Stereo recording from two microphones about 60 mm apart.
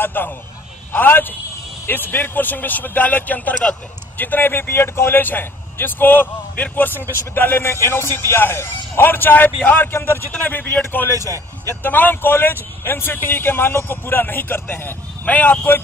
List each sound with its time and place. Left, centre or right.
0.0 s speech: left
10.4 s speech: left